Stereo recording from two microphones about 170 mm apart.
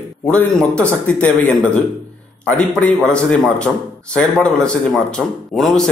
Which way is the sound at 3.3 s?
5° left (ahead or behind).